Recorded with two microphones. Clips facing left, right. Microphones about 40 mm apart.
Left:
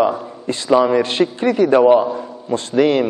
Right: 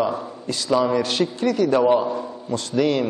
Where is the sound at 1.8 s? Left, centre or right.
Centre.